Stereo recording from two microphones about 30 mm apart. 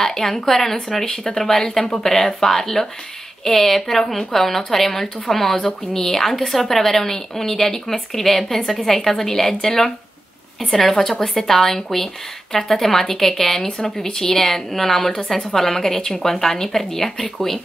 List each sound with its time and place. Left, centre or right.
0.0 s a woman's voice: centre
1.0 s speech: left
1.5 s a woman's voice: centre
8.6 s a woman's voice: centre
9.2 s a woman's voice: centre